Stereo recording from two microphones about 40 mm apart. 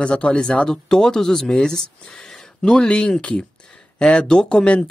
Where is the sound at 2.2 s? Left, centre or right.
Centre.